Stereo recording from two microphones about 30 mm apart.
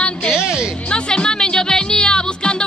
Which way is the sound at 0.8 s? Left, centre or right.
Left.